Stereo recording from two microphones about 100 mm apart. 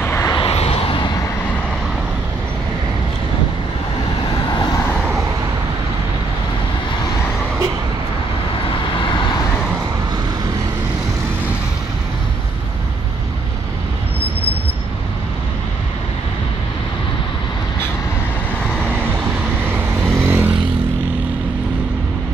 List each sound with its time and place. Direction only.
0.0 s vehicle: 20° left (ahead or behind)
0.4 s vehicle: 90° left; by 1.0 s 70° left (ahead or behind)
1.0 s vehicle: 35° left (ahead or behind)
9.0 s vehicle: 50° left (ahead or behind)
20.2 s vehicle: 20° right (ahead or behind)